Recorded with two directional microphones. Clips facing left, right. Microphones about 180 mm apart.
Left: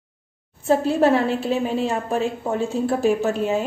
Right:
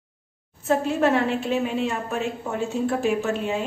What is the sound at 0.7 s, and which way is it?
A woman's voice, 35° left (ahead or behind).